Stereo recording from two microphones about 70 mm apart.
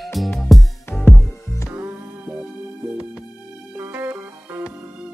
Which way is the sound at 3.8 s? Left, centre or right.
Right.